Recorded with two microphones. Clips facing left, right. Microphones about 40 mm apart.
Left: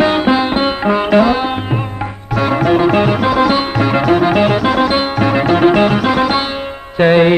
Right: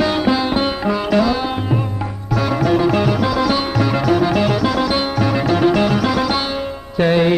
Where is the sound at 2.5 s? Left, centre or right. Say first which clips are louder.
Left 4 dB; left.